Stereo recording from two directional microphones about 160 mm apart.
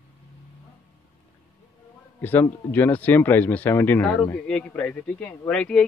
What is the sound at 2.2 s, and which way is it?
Speech, 10° left (ahead or behind).